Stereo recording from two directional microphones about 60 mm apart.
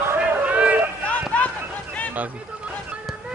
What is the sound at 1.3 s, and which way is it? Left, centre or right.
Run, left.